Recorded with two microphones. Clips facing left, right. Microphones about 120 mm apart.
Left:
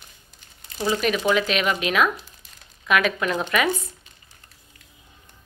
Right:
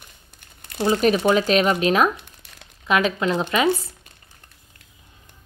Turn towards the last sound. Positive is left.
turn(degrees=-25)  # may be behind; listen again after turning